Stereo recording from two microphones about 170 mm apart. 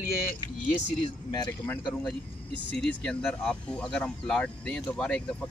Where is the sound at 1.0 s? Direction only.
25° left (ahead or behind).